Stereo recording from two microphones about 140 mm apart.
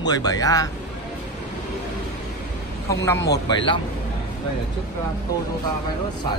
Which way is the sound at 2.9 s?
25° left (ahead or behind).